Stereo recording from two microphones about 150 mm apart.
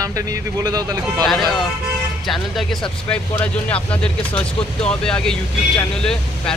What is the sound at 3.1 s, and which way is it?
Speech, 10° left (ahead or behind).